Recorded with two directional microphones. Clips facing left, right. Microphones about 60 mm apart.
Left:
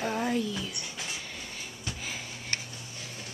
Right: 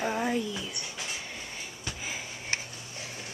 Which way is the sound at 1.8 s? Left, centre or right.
Centre.